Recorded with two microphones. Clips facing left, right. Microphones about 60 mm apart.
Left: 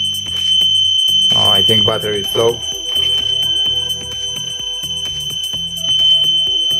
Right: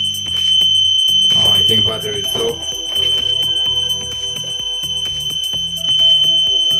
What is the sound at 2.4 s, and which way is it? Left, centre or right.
Speech, left.